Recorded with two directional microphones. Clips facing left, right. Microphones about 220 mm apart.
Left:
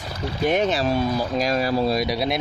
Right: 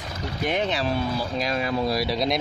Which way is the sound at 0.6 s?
45° left (ahead or behind).